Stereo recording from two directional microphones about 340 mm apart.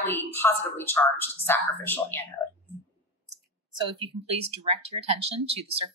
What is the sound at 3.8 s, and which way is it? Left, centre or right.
Speech, centre.